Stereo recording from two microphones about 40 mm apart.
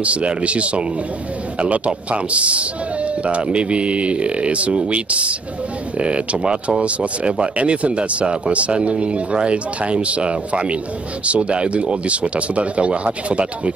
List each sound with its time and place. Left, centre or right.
0.0 s speech: right
6.4 s speech: centre
6.8 s speech: right